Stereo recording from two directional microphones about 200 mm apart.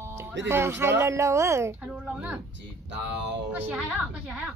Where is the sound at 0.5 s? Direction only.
15° right (ahead or behind).